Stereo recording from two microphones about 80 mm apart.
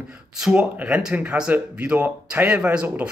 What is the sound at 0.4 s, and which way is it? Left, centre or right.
Speech, centre.